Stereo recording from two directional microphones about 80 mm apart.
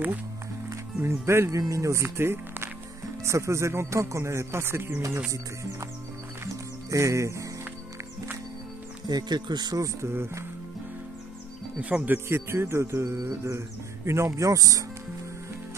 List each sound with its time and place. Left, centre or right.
1.0 s music: right
1.6 s speech: right
3.3 s music: right
5.3 s music: right
9.0 s speech: right
9.8 s music: right
11.8 s speech: centre
12.3 s music: right
14.0 s speech: right